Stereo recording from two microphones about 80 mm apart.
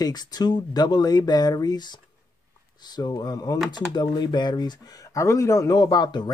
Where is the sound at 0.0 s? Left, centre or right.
Left.